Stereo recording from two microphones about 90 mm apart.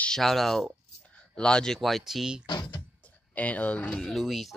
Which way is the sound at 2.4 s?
50° left (ahead or behind).